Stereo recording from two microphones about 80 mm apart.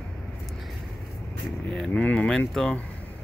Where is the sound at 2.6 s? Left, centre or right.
Centre.